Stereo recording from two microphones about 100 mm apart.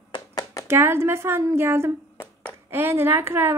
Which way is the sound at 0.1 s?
40° left (ahead or behind).